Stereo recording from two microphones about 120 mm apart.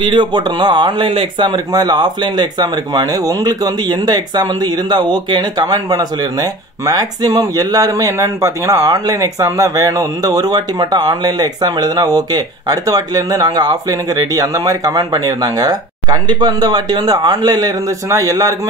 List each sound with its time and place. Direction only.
0.0 s speech: 40° right (ahead or behind)